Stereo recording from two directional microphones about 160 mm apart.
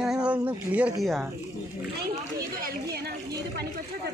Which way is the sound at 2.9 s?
80° right.